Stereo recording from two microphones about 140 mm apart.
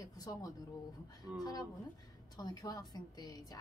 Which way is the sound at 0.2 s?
25° left (ahead or behind).